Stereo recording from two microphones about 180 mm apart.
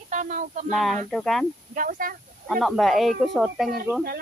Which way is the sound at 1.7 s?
50° right (ahead or behind).